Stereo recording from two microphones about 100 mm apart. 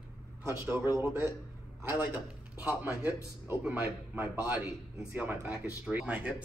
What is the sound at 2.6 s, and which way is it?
A man's voice, 20° right (ahead or behind).